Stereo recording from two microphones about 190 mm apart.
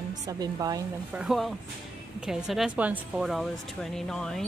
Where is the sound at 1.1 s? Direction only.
5° right (ahead or behind).